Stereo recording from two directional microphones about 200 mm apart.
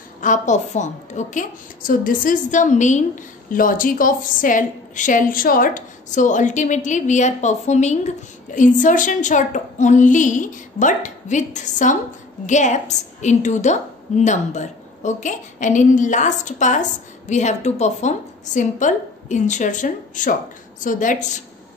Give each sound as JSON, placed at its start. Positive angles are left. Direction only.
{"t": 0.2, "sound": "a woman's voice", "side_deg": 40}